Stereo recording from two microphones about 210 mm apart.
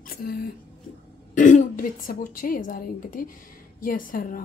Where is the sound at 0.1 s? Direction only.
45° left (ahead or behind).